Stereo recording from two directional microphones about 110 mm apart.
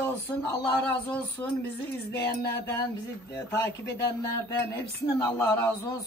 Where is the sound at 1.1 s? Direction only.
15° left (ahead or behind).